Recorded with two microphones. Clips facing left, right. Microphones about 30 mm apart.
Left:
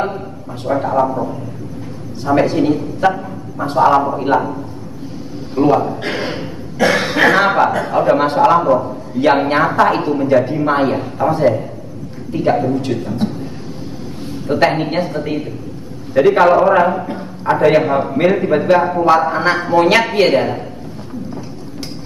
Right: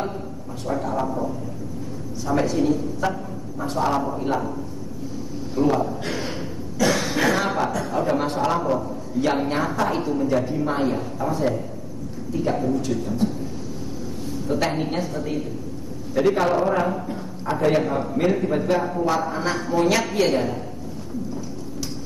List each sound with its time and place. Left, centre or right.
0.7 s a woman's voice: left
5.6 s a man's voice: left
14.5 s a woman's voice: left